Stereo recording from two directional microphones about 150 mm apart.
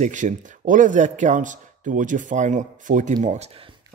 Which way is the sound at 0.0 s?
55° right (ahead or behind).